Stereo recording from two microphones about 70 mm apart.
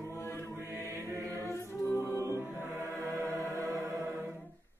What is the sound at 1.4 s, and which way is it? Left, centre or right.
A capella, left.